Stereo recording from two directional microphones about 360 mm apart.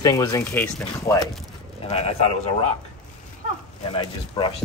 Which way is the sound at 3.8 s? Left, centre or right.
Centre.